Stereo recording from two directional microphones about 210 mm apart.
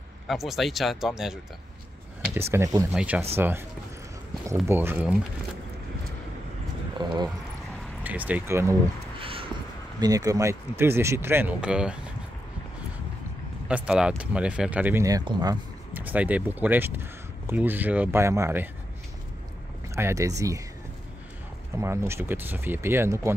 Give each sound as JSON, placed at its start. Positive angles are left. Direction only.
{"t": 0.3, "sound": "speech", "side_deg": 0}
{"t": 2.5, "sound": "speech", "side_deg": -15}
{"t": 4.6, "sound": "speech", "side_deg": -10}
{"t": 7.2, "sound": "a sound", "side_deg": 0}
{"t": 9.2, "sound": "a sound", "side_deg": -25}
{"t": 9.9, "sound": "speech", "side_deg": -15}
{"t": 13.7, "sound": "speech", "side_deg": -5}
{"t": 20.0, "sound": "speech", "side_deg": -15}
{"t": 21.7, "sound": "speech", "side_deg": -10}